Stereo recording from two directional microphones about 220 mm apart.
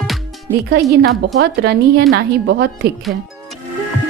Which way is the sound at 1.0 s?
50° right (ahead or behind).